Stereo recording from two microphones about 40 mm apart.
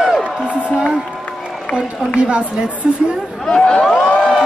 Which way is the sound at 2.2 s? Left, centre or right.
Right.